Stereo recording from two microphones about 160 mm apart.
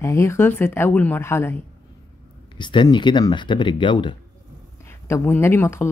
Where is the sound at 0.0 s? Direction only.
15° left (ahead or behind).